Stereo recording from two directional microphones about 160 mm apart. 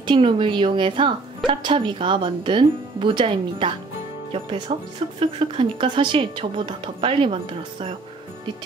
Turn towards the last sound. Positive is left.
turn(degrees=-35)  # may be behind; listen again after turning